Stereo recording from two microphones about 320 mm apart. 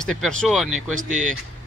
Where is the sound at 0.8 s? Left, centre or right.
Right.